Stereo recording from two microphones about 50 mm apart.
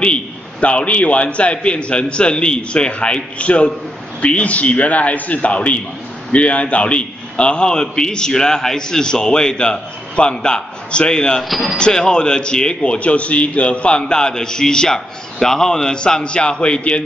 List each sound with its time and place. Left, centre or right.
0.0 s a man's voice: left
11.4 s speech: centre
11.7 s a man's voice: centre